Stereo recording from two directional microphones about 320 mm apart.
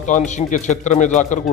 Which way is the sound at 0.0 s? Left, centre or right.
Left.